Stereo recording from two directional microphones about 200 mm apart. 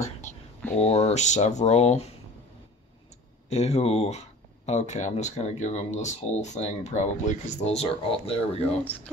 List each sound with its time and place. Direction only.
0.7 s speech: 30° left (ahead or behind)
3.4 s speech: 35° left (ahead or behind)